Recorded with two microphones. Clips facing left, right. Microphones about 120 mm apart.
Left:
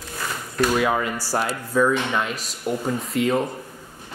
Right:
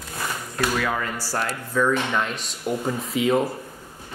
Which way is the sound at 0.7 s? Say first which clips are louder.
Left 4 dB; 20° left (ahead or behind).